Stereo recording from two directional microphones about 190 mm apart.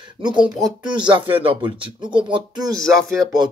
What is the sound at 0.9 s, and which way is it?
Speech, 25° right (ahead or behind).